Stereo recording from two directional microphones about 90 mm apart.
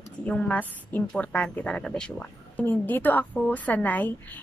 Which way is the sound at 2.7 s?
20° left (ahead or behind).